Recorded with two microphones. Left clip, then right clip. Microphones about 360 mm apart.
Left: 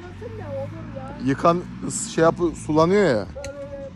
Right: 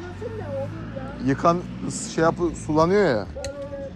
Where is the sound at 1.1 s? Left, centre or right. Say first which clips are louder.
Left 1 dB; centre.